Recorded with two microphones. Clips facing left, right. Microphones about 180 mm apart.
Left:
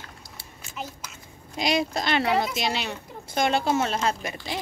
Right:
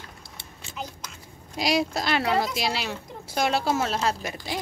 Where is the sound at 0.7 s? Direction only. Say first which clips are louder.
Even; 5° left (ahead or behind).